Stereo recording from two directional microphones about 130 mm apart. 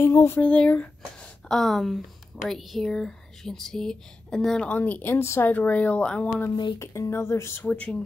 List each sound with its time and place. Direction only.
0.0 s speech: 20° left (ahead or behind)
0.4 s speech: 10° left (ahead or behind)
6.8 s speech: 20° left (ahead or behind)